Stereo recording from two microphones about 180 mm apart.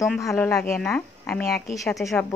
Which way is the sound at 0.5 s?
5° left (ahead or behind).